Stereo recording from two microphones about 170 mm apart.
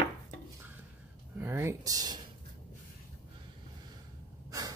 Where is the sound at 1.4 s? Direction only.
15° right (ahead or behind).